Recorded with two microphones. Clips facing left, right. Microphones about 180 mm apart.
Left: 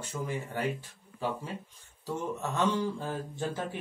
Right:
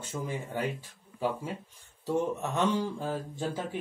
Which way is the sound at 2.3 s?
15° right (ahead or behind).